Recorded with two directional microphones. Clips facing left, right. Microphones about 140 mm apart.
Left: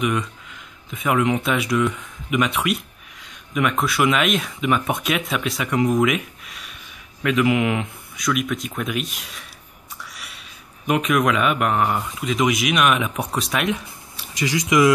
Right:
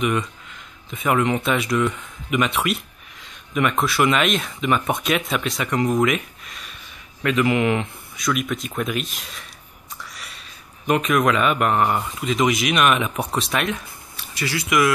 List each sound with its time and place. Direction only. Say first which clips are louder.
0.0 s speech: right 1 dB; centre (ahead or behind)
10.1 s a sound: even; 5° left (ahead or behind)
10.9 s speech: even; centre (ahead or behind)
14.3 s speech: left 3 dB; 15° left (ahead or behind)